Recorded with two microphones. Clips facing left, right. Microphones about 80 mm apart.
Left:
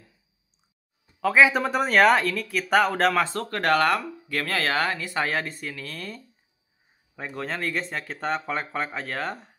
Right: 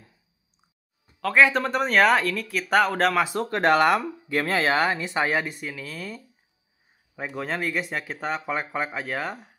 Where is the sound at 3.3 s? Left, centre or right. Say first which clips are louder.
Right 2 dB; centre.